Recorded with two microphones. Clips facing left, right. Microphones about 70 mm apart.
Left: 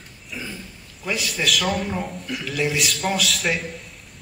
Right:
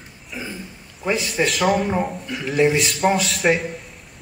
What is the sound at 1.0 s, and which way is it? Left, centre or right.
A man's voice, right.